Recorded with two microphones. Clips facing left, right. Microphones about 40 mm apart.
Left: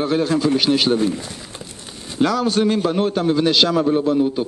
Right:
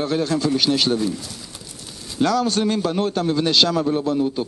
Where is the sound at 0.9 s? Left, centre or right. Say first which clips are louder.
Left 3 dB; left.